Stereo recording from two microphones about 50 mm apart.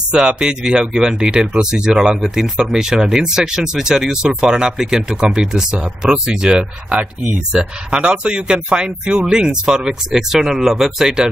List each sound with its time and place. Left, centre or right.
0.1 s speech: centre